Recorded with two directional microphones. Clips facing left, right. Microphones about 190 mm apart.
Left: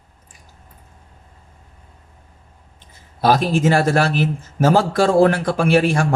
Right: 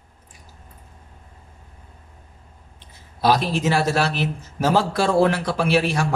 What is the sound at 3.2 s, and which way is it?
Speech, 50° left (ahead or behind).